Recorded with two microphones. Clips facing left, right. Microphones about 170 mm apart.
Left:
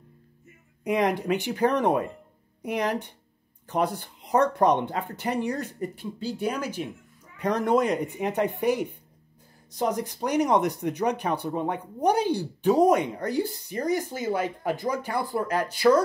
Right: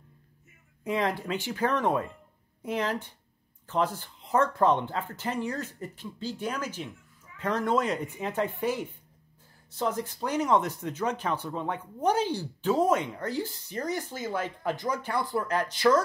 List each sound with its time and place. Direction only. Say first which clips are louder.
0.8 s speech: left 5 dB; 15° left (ahead or behind)